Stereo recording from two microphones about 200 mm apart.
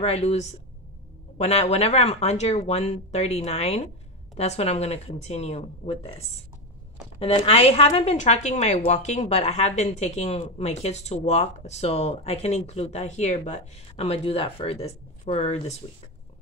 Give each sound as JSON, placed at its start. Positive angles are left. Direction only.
{"t": 0.0, "sound": "a woman's voice", "side_deg": 30}